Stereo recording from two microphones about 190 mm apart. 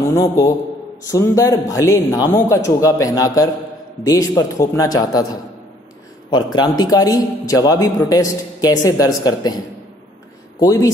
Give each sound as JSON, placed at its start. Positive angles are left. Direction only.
{"t": 1.0, "sound": "a man's voice", "side_deg": 15}
{"t": 10.6, "sound": "speech", "side_deg": 20}